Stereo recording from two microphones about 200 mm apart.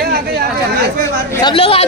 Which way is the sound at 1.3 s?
25° left (ahead or behind).